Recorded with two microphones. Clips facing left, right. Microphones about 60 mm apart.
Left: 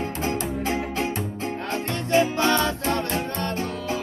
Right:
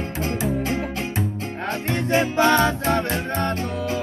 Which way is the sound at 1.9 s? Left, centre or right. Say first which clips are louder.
Even; right.